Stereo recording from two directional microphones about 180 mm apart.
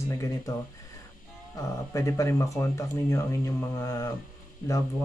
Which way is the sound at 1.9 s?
15° left (ahead or behind).